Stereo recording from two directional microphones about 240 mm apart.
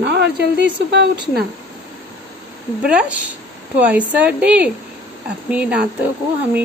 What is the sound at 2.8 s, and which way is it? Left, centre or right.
Speech, centre.